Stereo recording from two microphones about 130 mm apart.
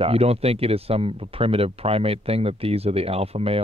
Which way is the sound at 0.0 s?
50° right (ahead or behind).